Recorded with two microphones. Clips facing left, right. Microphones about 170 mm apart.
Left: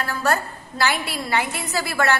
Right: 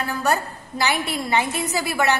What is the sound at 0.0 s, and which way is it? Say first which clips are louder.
A woman's voice: even; 15° right (ahead or behind).